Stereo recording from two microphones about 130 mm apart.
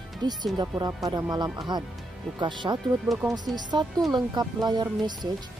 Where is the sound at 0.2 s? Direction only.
30° right (ahead or behind).